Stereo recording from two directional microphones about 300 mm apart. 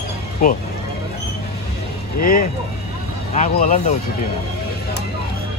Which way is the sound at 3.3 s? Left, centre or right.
Left.